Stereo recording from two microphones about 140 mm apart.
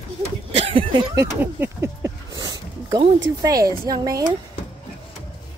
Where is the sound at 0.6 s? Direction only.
40° right (ahead or behind).